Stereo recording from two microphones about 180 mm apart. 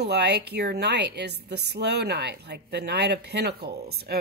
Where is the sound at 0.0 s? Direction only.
65° right (ahead or behind).